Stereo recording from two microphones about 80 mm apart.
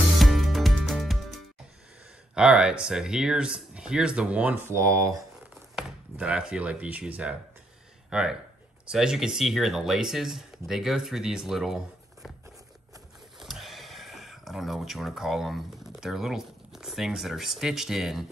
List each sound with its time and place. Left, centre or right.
0.2 s music: centre
2.3 s speech: centre
4.6 s speech: right
5.5 s speech: centre
13.4 s speech: centre